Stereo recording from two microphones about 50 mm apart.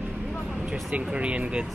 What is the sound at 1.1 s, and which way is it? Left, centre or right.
Speech, right.